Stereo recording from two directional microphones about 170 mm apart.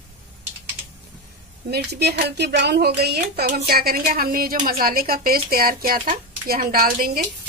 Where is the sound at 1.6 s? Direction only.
70° right (ahead or behind).